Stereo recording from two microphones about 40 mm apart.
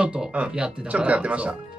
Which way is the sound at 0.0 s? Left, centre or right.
Right.